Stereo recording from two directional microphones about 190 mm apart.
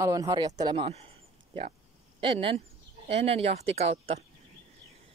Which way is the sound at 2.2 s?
30° right (ahead or behind).